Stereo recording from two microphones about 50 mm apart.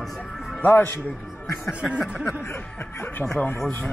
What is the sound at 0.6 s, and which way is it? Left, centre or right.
Speech, left.